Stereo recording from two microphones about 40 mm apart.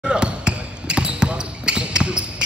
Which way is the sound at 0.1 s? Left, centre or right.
Right.